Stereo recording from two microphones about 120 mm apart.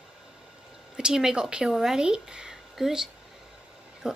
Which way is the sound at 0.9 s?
5° right (ahead or behind).